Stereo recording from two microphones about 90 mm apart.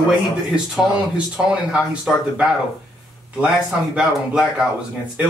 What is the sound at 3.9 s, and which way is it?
Speech, 10° right (ahead or behind).